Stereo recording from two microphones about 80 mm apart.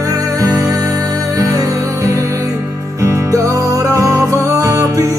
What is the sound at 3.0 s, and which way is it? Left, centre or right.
Music, right.